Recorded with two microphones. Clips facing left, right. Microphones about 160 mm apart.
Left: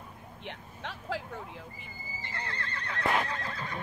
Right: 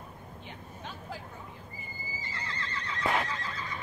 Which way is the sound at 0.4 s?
75° left (ahead or behind).